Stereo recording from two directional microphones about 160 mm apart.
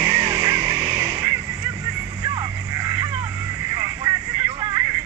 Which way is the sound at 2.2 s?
25° right (ahead or behind).